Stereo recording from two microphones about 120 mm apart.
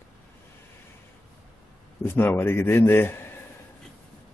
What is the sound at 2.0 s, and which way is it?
Speech, 15° left (ahead or behind).